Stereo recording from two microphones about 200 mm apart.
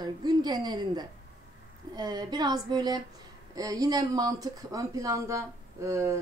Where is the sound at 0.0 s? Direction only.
20° right (ahead or behind).